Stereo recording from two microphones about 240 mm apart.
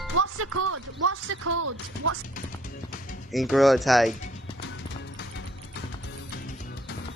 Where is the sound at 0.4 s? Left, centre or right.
Right.